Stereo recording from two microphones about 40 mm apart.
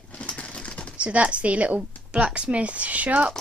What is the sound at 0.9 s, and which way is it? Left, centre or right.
Speech, right.